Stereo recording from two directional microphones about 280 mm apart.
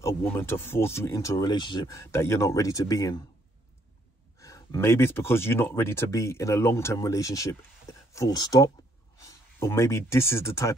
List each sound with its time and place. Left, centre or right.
0.0 s speech: centre
4.4 s speech: centre